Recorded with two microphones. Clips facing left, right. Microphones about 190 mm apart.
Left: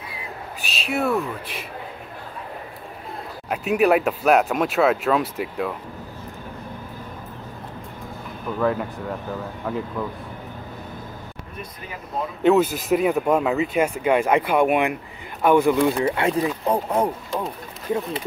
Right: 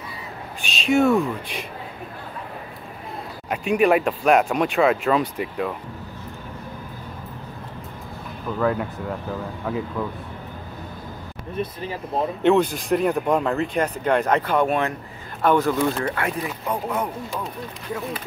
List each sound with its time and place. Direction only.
0.7 s speech: 5° left (ahead or behind)
3.4 s speech: 5° left (ahead or behind)
8.5 s speech: centre (ahead or behind)
11.5 s speech: 30° right (ahead or behind)
12.4 s speech: 5° left (ahead or behind)
16.2 s speech: 25° left (ahead or behind)